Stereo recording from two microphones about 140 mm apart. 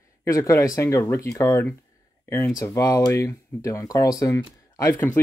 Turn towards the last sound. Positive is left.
turn(degrees=20)  # may be behind; listen again after turning